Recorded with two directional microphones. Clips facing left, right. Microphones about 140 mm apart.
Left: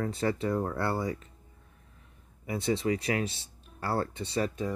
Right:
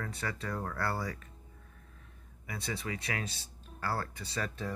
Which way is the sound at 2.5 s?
25° left (ahead or behind).